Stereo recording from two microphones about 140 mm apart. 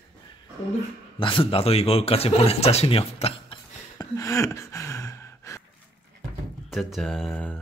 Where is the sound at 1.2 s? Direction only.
40° left (ahead or behind).